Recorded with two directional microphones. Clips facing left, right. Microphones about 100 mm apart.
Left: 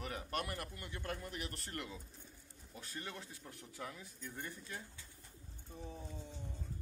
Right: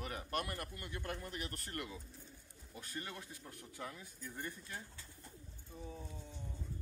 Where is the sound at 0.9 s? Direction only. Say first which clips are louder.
Even; 15° right (ahead or behind).